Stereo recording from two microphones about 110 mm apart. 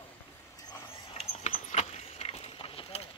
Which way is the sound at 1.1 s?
75° left (ahead or behind).